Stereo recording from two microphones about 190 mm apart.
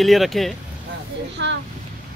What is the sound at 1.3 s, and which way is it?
Speech, 65° right (ahead or behind).